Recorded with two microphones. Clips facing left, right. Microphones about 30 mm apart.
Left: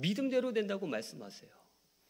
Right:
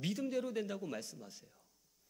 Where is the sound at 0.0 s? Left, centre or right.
Left.